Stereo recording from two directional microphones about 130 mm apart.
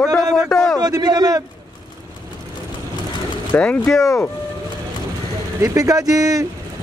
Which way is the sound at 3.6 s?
10° left (ahead or behind).